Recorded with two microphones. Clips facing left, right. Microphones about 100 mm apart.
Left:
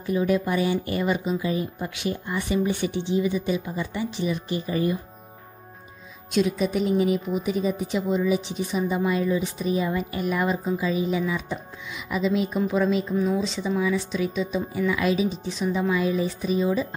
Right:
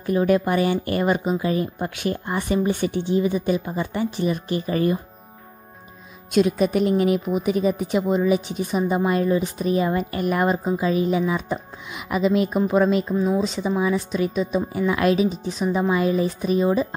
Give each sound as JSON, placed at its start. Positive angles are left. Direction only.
{"t": 0.0, "sound": "speech", "side_deg": -55}
{"t": 6.3, "sound": "speech", "side_deg": -55}
{"t": 15.4, "sound": "speech", "side_deg": -45}
{"t": 15.9, "sound": "speech", "side_deg": -55}